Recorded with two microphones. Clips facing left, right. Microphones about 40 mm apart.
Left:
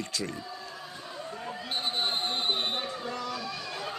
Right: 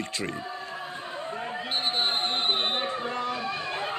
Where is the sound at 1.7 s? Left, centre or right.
Right.